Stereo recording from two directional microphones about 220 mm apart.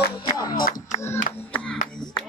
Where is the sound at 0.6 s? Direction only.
40° left (ahead or behind).